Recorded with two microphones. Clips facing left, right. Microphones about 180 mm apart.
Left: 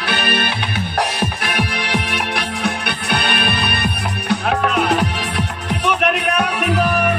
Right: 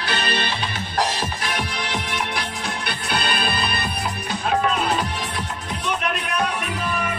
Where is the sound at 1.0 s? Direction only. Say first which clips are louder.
Left 2 dB; 60° left (ahead or behind).